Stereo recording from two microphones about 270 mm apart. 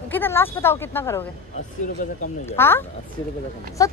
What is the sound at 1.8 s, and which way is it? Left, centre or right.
Speech, left.